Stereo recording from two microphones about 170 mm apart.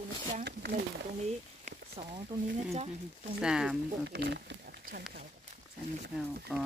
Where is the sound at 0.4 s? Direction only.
75° right (ahead or behind).